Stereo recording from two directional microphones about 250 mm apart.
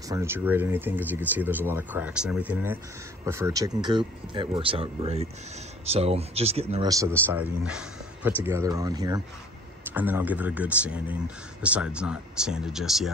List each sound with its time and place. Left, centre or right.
0.1 s speech: centre